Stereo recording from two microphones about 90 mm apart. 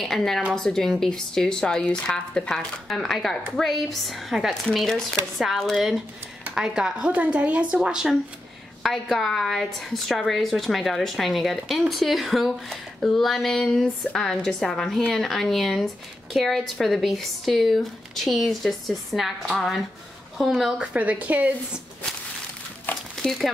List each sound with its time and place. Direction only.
0.0 s speech: 5° left (ahead or behind)
8.8 s speech: centre (ahead or behind)
20.9 s speech: 15° right (ahead or behind)
23.1 s speech: centre (ahead or behind)